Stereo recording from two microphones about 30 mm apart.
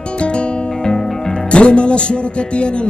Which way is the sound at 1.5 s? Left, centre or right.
Left.